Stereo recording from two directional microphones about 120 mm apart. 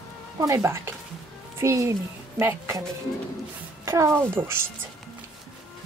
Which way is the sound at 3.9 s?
25° right (ahead or behind).